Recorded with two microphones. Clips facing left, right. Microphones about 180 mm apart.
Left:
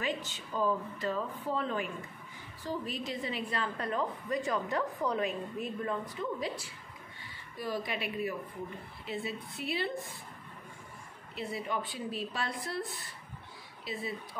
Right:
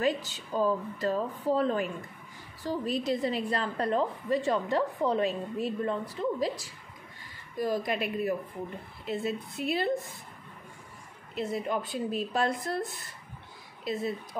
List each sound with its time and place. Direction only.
0.0 s a woman's voice: 40° right (ahead or behind)
11.3 s a woman's voice: 45° right (ahead or behind)